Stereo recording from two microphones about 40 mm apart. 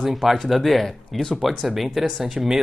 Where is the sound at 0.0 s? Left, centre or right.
Centre.